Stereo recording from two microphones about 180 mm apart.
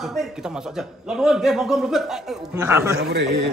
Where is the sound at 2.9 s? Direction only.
70° right (ahead or behind).